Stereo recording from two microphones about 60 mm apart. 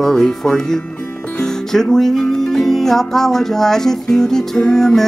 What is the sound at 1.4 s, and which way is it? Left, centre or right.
Music, centre.